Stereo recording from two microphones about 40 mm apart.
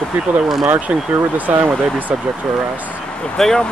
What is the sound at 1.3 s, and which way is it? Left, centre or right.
Speech, right.